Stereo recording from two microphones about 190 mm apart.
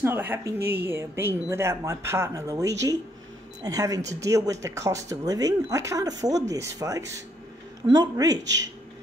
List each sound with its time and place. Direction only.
0.0 s speech: 10° right (ahead or behind)